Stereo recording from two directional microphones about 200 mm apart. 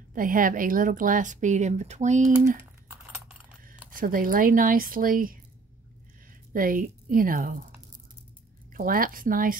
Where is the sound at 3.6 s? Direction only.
45° right (ahead or behind).